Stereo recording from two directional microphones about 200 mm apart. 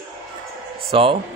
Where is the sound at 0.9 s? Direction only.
30° right (ahead or behind).